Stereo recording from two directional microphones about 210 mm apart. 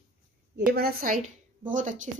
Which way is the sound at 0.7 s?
45° right (ahead or behind).